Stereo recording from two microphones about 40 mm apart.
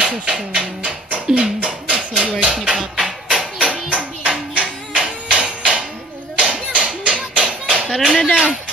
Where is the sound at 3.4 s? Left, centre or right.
Right.